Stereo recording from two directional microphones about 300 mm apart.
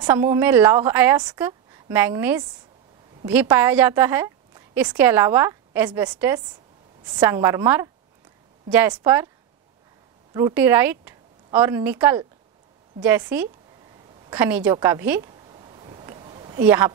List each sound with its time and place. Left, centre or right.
0.0 s a woman's voice: centre
10.3 s a woman's voice: centre
15.5 s a sound: centre
16.6 s speech: centre